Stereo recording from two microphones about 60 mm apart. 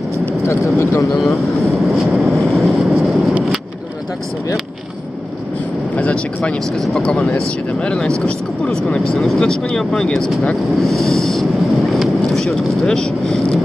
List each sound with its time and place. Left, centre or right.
0.5 s speech: left
1.4 s vehicle: centre
5.9 s speech: left; by 12.8 s centre
12.8 s vehicle: centre